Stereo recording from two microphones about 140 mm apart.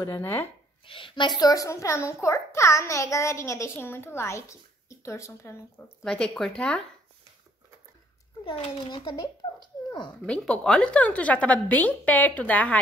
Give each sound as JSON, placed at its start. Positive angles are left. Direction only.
{"t": 0.0, "sound": "a woman's voice", "side_deg": 20}
{"t": 0.8, "sound": "a child's voice", "side_deg": 40}
{"t": 6.0, "sound": "speech", "side_deg": 5}
{"t": 8.8, "sound": "a child's voice", "side_deg": 30}
{"t": 10.2, "sound": "a woman's voice", "side_deg": 5}